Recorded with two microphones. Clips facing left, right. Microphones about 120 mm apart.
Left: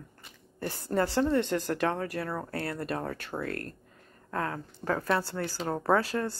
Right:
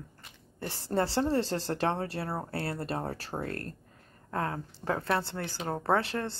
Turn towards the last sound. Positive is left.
turn(degrees=-25)  # may be behind; listen again after turning